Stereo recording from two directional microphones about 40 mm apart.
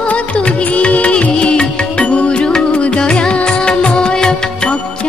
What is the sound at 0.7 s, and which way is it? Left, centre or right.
Music, left.